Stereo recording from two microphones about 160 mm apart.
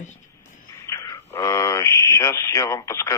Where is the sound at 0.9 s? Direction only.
20° left (ahead or behind).